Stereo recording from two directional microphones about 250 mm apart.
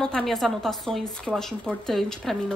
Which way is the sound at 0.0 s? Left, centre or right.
Centre.